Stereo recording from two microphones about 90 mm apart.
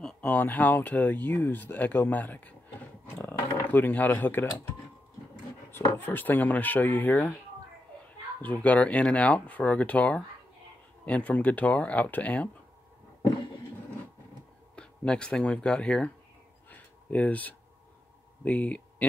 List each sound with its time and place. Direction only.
0.0 s speech: 15° left (ahead or behind)
3.7 s speech: 20° left (ahead or behind)
5.7 s speech: 25° left (ahead or behind)
8.4 s speech: 15° left (ahead or behind)
14.8 s speech: 10° left (ahead or behind)
16.7 s a sound: 15° left (ahead or behind)
18.4 s speech: 15° left (ahead or behind)